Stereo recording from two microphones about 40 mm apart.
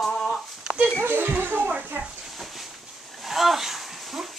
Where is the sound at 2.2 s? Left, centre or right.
Centre.